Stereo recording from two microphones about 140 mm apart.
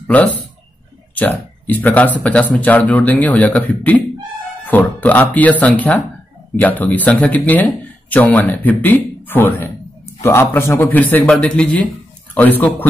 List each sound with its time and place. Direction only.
0.0 s speech: 10° left (ahead or behind)